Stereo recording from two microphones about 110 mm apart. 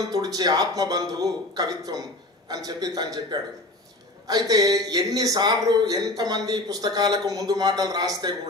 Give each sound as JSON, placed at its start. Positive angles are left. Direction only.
{"t": 0.1, "sound": "a man's voice", "side_deg": -35}